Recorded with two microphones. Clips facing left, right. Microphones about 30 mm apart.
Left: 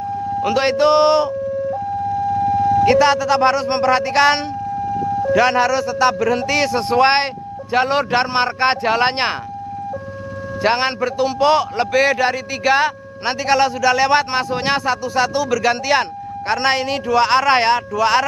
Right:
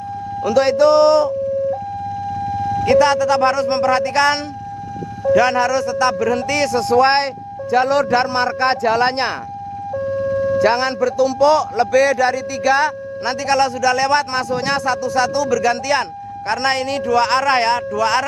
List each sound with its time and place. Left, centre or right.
0.4 s a man's voice: left
2.3 s vehicle: centre
3.3 s speech: centre
6.6 s a man's voice: left
10.3 s a sound: centre
10.6 s a man's voice: left
13.5 s speech: centre
14.3 s a man's voice: left
17.7 s speech: centre